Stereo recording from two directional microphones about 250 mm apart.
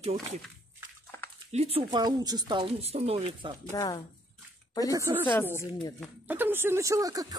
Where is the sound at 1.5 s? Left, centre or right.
Right.